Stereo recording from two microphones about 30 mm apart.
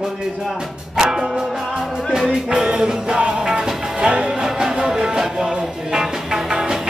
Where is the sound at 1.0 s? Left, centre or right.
Right.